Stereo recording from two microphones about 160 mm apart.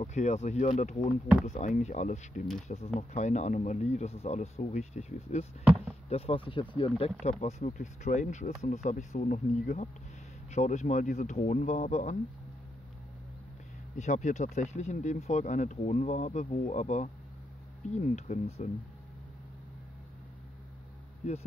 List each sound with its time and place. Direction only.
0.0 s speech: 45° left (ahead or behind); by 6.9 s 30° left (ahead or behind)
7.2 s speech: 45° left (ahead or behind)
13.9 s speech: 50° left (ahead or behind)
21.2 s speech: 45° left (ahead or behind)